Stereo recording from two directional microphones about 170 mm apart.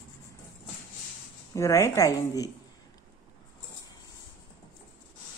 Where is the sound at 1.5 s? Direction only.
15° left (ahead or behind).